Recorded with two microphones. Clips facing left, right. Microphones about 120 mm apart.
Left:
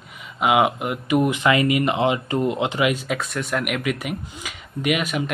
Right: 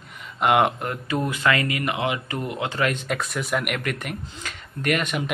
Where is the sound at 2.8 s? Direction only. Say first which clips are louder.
Left 3 dB; 5° left (ahead or behind).